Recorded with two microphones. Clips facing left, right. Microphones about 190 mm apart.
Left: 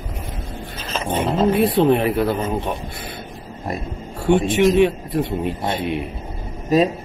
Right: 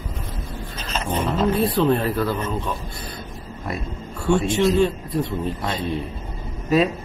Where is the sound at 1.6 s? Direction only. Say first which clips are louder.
Left 3 dB; 25° left (ahead or behind).